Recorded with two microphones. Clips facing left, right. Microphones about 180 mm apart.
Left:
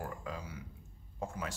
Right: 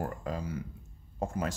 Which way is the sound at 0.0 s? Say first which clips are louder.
Right 6 dB; 45° right (ahead or behind).